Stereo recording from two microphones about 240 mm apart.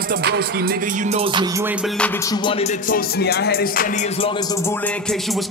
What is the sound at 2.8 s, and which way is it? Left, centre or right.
Music, left.